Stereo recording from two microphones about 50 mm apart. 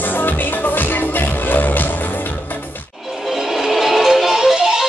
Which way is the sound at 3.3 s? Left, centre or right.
Centre.